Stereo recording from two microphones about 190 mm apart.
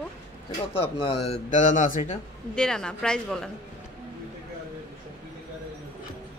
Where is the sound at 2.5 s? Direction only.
5° left (ahead or behind).